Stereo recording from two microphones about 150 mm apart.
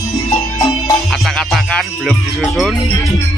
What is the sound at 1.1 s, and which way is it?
Music, 5° left (ahead or behind).